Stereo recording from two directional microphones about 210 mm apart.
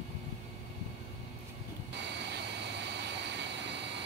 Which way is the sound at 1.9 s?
55° right (ahead or behind).